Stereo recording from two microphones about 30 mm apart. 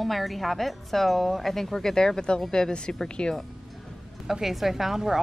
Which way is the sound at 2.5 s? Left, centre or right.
Left.